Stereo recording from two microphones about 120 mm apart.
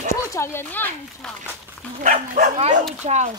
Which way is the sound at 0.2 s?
25° left (ahead or behind).